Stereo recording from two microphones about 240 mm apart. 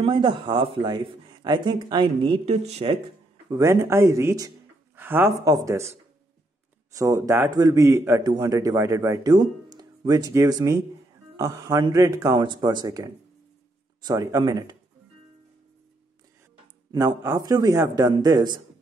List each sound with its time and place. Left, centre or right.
0.0 s speech: right
3.4 s a man's voice: centre
6.9 s a man's voice: centre
16.9 s a man's voice: centre